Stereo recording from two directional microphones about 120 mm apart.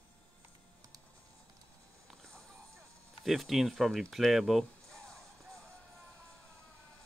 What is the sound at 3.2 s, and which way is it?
Speech, centre (ahead or behind).